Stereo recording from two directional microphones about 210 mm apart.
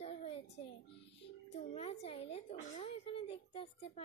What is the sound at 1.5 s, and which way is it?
A woman's voice, 30° left (ahead or behind).